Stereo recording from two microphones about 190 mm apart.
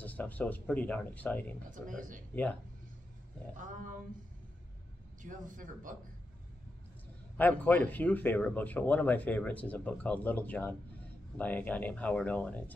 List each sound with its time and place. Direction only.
0.0 s speech: 10° left (ahead or behind)
1.7 s speech: 45° right (ahead or behind)
3.5 s speech: 45° right (ahead or behind)
5.2 s speech: 45° right (ahead or behind)
7.3 s speech: 10° left (ahead or behind)